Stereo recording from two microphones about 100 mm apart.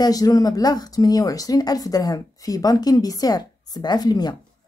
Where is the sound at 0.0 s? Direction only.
40° left (ahead or behind).